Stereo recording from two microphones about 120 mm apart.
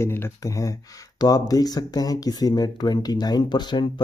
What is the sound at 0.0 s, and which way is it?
Speech, 20° left (ahead or behind).